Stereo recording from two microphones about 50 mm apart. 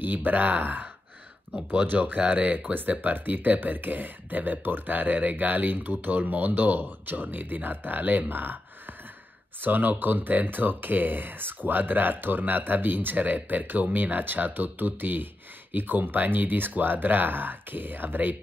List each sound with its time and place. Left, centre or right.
0.0 s speech: right
1.9 s speech: right